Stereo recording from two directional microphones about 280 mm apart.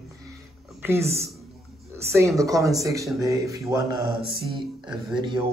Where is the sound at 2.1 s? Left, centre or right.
Centre.